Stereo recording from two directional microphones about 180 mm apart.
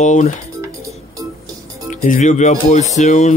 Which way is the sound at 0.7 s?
20° right (ahead or behind).